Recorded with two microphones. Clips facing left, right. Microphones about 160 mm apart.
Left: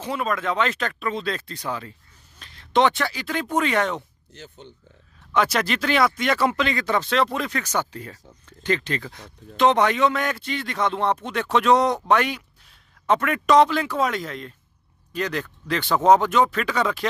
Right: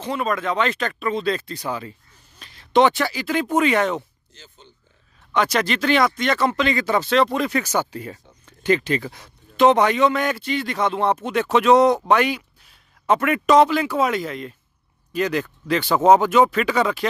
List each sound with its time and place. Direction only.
0.0 s speech: centre (ahead or behind)
4.3 s speech: 60° left (ahead or behind)
5.3 s a man's voice: centre (ahead or behind)